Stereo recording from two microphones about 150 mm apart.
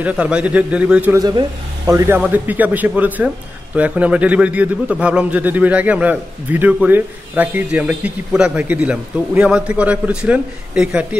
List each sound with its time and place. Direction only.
0.0 s a man's voice: 5° right (ahead or behind)
1.1 s a man's voice: 25° right (ahead or behind); by 11.1 s 5° right (ahead or behind)